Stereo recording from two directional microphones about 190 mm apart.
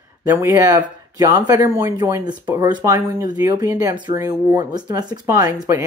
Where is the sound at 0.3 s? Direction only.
15° right (ahead or behind).